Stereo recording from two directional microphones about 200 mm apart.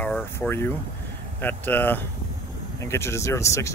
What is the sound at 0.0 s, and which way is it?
Speech, 10° left (ahead or behind).